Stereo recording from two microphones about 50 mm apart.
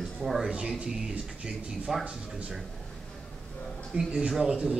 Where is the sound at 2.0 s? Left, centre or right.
Right.